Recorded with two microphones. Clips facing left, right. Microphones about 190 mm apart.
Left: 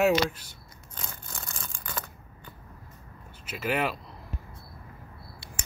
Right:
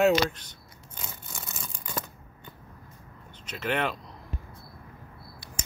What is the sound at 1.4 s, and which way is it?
Tearing, 5° right (ahead or behind).